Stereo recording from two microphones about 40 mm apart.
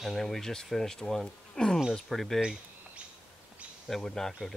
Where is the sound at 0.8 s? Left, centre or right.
Centre.